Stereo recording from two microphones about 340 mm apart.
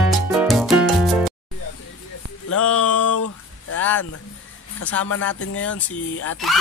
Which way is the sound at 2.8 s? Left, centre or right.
Left.